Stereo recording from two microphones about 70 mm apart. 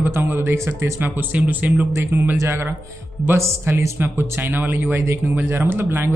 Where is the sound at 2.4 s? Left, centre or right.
Right.